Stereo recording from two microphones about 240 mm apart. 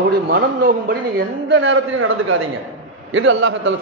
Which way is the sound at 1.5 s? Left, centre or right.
Right.